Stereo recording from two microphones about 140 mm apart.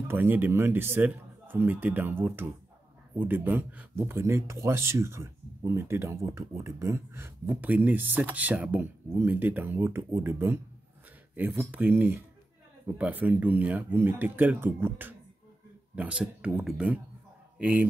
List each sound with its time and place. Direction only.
0.1 s a man's voice: 15° right (ahead or behind)